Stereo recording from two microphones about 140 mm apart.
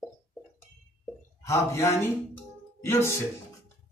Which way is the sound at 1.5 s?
20° left (ahead or behind).